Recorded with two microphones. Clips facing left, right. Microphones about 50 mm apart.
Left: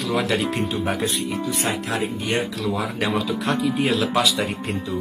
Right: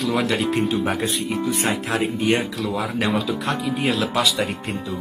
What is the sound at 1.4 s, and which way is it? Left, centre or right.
Speech, right.